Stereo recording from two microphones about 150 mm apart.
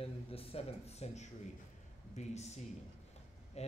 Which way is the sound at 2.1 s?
50° left (ahead or behind).